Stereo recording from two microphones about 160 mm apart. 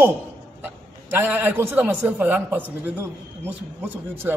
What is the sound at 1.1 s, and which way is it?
A man's voice, 10° right (ahead or behind).